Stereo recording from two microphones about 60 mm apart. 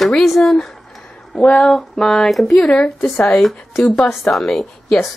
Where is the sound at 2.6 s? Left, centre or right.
Centre.